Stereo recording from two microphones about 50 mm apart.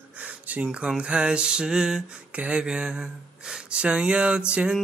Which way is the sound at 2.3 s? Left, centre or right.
Right.